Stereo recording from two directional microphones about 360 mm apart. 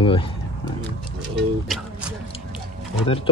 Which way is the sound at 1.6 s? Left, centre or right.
Centre.